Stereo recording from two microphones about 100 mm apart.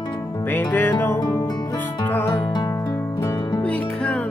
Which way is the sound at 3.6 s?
10° left (ahead or behind).